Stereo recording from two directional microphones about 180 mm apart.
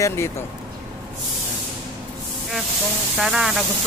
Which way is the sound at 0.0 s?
15° left (ahead or behind).